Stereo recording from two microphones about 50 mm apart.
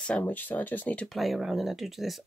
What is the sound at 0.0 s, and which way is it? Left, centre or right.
Speech, left.